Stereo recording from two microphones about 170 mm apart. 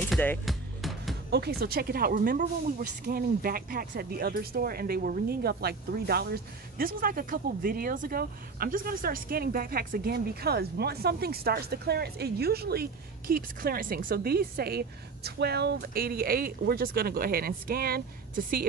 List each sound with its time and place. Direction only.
0.1 s music: 10° left (ahead or behind)
0.5 s music: centre (ahead or behind)
1.3 s speech: 70° right (ahead or behind)